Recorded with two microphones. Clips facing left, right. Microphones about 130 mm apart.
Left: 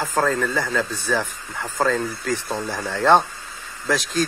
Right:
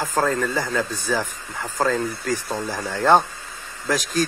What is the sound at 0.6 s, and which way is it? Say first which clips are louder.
Speech: even; 10° right (ahead or behind).